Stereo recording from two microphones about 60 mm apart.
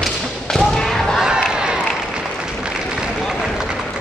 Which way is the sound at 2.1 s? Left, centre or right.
Centre.